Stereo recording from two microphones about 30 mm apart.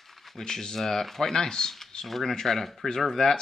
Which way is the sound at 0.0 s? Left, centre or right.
Centre.